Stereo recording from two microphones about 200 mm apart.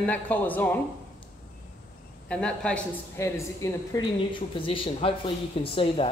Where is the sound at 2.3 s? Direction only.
5° left (ahead or behind).